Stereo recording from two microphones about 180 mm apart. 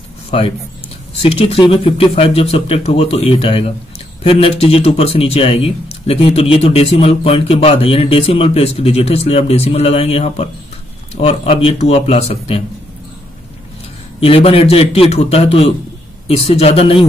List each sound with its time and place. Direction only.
1.2 s speech: 30° left (ahead or behind)
14.2 s speech: 30° left (ahead or behind)